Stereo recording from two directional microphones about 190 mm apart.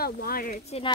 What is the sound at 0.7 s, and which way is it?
Speech, 30° left (ahead or behind).